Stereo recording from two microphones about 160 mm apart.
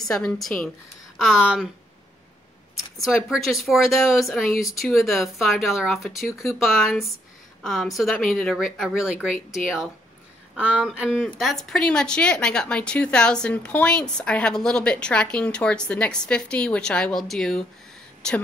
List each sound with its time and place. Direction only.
0.1 s speech: 5° left (ahead or behind)
3.0 s speech: centre (ahead or behind)